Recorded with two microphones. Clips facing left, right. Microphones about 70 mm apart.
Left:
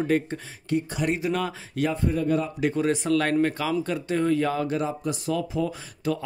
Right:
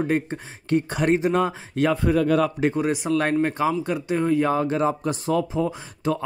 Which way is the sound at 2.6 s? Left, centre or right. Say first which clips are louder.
Right 2 dB; right.